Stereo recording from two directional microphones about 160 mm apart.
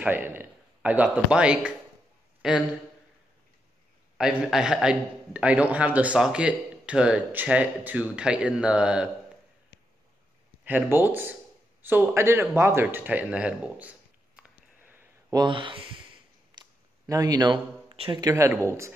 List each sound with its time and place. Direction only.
0.0 s a man's voice: 10° right (ahead or behind)
4.2 s a man's voice: 5° right (ahead or behind)
10.6 s a man's voice: 10° right (ahead or behind)
11.8 s a sound: 15° right (ahead or behind)
15.3 s speech: 30° right (ahead or behind)
16.5 s a sound: 20° right (ahead or behind)
18.2 s a man's voice: 20° right (ahead or behind)